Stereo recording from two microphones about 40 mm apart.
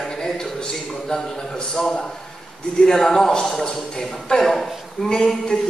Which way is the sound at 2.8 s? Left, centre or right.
Centre.